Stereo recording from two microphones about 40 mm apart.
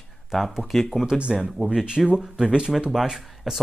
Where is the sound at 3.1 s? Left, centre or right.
Centre.